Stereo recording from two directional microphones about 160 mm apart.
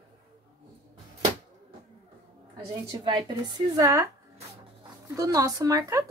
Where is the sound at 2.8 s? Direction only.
30° right (ahead or behind).